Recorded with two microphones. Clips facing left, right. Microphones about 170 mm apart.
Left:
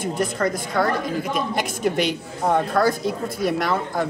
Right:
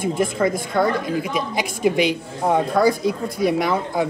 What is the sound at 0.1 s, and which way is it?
Speech, centre (ahead or behind).